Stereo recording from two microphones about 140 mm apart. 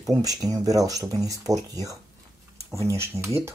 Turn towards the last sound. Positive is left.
turn(degrees=-20)  # may be behind; listen again after turning